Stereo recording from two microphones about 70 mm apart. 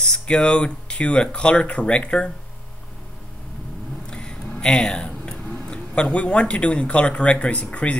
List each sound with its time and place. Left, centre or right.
0.1 s speech: centre
4.1 s a sound: centre
5.7 s speech: centre